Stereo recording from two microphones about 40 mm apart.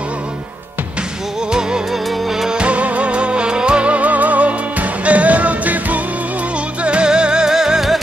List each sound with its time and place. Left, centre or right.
1.5 s music: centre
2.5 s music: right
6.8 s music: right; by 8.0 s centre